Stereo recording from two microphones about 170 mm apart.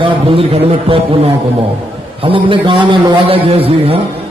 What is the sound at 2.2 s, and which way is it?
A man's voice, 30° right (ahead or behind).